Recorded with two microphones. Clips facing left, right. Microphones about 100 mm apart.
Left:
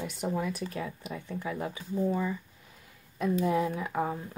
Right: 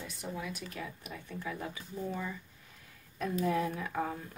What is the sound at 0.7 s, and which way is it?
Speech, 25° left (ahead or behind).